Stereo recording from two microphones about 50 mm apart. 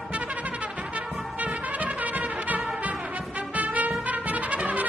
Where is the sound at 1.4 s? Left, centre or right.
Right.